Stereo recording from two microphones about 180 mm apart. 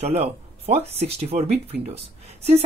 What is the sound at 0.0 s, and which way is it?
Speech, 35° right (ahead or behind).